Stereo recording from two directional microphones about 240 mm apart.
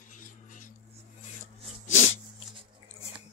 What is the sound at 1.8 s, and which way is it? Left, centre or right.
Dog, left.